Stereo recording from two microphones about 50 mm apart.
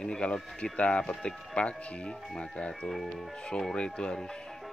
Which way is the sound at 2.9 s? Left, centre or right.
Centre.